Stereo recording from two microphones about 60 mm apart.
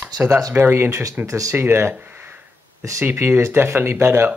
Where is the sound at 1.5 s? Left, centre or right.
Right.